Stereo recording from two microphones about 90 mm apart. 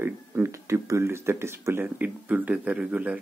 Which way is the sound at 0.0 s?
30° right (ahead or behind).